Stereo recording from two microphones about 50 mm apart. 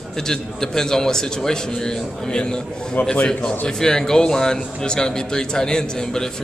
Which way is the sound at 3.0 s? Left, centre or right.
Left.